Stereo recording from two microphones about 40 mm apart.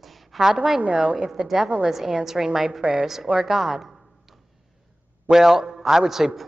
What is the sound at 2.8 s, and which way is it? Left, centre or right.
Speech, right.